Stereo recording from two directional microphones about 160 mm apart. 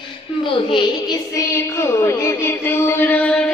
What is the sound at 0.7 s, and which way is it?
Child singing, 25° left (ahead or behind).